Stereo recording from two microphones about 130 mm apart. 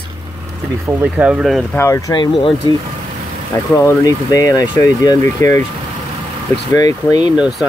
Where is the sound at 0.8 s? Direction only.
10° right (ahead or behind).